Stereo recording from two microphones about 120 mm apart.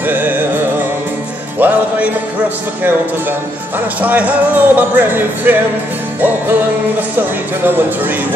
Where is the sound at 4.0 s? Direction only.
10° right (ahead or behind).